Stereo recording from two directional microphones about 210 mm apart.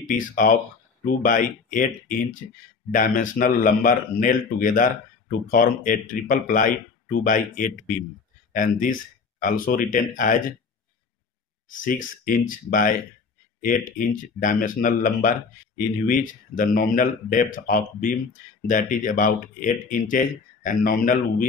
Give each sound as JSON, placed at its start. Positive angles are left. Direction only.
{"t": 0.0, "sound": "speech", "side_deg": 40}
{"t": 11.8, "sound": "speech", "side_deg": 40}